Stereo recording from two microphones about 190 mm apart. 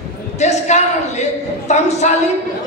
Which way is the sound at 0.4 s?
35° left (ahead or behind).